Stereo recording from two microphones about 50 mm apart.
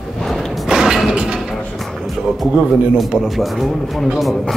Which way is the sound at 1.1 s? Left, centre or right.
Right.